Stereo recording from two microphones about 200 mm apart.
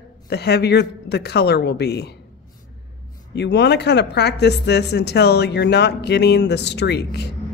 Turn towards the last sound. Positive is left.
turn(degrees=55)  # may be behind; listen again after turning